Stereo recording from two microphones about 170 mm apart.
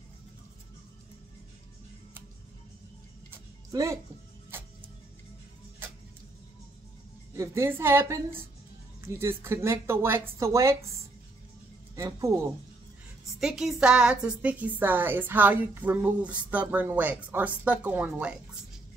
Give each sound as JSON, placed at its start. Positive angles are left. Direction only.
{"t": 3.3, "sound": "music", "side_deg": -15}
{"t": 7.3, "sound": "a woman's voice", "side_deg": -15}
{"t": 11.9, "sound": "speech", "side_deg": -20}
{"t": 13.4, "sound": "a woman's voice", "side_deg": 0}